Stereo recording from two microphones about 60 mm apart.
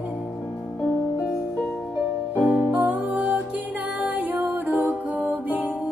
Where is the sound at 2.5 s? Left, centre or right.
Right.